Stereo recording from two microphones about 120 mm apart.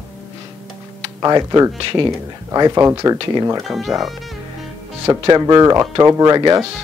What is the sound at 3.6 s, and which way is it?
Speech, centre (ahead or behind).